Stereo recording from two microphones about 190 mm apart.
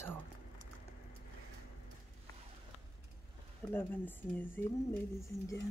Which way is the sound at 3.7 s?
10° left (ahead or behind).